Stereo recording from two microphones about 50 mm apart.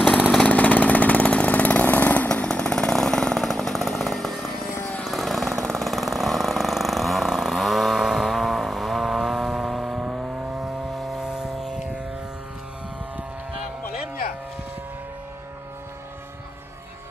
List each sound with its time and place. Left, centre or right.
0.5 s chainsaw: left
2.2 s chainsaw: left; by 4.5 s centre
5.0 s music: centre
5.6 s vehicle: centre
9.9 s vehicle: centre